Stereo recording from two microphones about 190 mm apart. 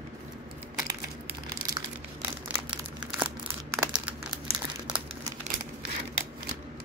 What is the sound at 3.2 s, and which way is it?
Crumpling, 5° right (ahead or behind).